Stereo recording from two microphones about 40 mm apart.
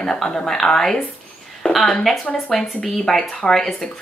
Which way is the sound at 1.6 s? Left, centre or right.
Left.